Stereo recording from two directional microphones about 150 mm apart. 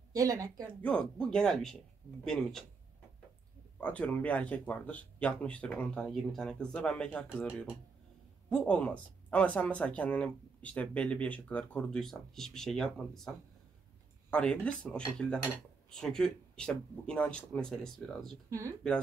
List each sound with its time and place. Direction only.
0.1 s a woman's voice: 25° right (ahead or behind)
0.8 s speech: 5° left (ahead or behind)
3.8 s speech: 10° left (ahead or behind)
8.5 s speech: 5° left (ahead or behind)
14.3 s speech: 5° left (ahead or behind)
18.5 s a woman's voice: 20° right (ahead or behind)